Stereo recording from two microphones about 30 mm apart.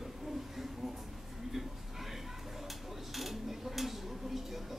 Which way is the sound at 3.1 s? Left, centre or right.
Centre.